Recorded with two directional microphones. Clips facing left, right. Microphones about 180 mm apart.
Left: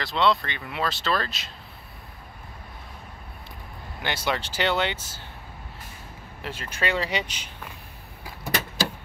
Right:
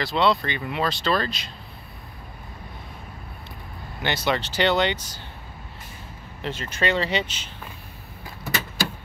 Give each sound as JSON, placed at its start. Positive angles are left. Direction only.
{"t": 0.0, "sound": "speech", "side_deg": 0}
{"t": 4.0, "sound": "speech", "side_deg": 10}
{"t": 6.4, "sound": "speech", "side_deg": 10}